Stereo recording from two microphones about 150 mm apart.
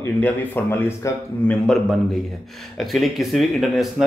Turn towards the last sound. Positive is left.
turn(degrees=0)  # may be behind; listen again after turning